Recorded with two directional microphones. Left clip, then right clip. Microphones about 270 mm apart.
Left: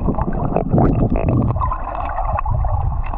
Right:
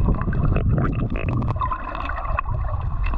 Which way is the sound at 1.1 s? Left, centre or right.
Centre.